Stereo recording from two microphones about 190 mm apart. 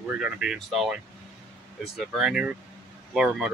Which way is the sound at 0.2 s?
5° right (ahead or behind).